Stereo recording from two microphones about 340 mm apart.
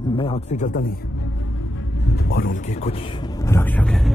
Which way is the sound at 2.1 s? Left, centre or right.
Left.